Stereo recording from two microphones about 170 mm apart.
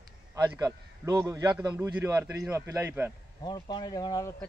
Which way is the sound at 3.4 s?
25° left (ahead or behind).